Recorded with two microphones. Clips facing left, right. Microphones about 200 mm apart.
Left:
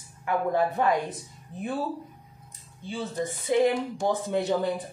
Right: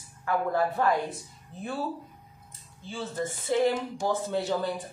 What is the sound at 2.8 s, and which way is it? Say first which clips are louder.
Speech: left 2 dB; 15° left (ahead or behind).